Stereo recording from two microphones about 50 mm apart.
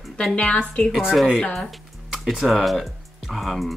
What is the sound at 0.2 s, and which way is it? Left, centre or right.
Speech, centre.